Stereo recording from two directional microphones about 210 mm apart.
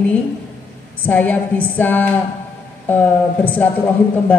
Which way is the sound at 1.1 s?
5° left (ahead or behind).